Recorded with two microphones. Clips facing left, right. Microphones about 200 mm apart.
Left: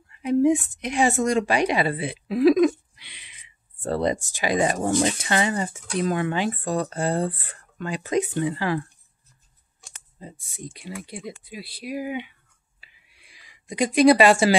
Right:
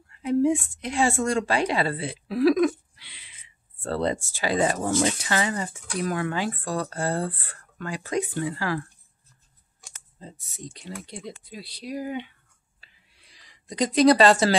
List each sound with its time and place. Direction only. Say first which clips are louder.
0.1 s a woman's voice: left 2 dB; 20° left (ahead or behind)
9.9 s clicking: left 2 dB; 15° left (ahead or behind)
10.4 s speech: left 2 dB; 10° left (ahead or behind)
12.8 s a sound: left 1 dB; 10° left (ahead or behind)